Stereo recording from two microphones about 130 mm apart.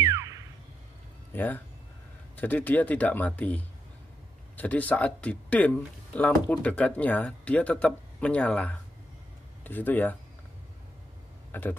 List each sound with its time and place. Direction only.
0.0 s a sound: 20° right (ahead or behind)
1.3 s speech: 15° left (ahead or behind)
11.5 s speech: 15° left (ahead or behind)